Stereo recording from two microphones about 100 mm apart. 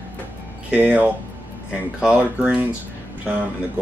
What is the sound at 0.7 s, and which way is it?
Speech, 15° right (ahead or behind).